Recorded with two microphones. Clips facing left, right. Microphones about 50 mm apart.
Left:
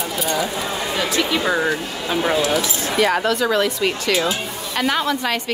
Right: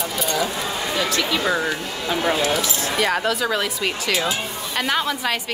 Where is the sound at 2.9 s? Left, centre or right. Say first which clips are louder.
Left 4 dB; centre.